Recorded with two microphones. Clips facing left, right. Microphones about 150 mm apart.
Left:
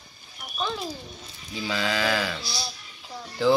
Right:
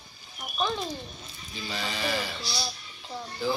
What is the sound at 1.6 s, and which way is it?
Speech, 90° left.